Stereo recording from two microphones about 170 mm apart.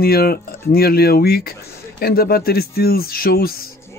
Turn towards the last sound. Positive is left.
turn(degrees=60)  # may be behind; listen again after turning